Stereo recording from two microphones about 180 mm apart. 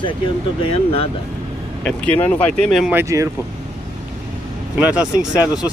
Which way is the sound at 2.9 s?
15° right (ahead or behind).